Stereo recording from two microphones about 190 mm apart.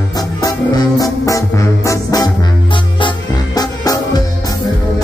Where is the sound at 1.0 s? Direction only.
15° left (ahead or behind).